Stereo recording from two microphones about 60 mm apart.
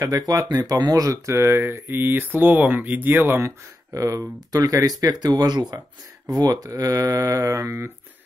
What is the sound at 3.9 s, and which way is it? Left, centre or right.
Speech, right.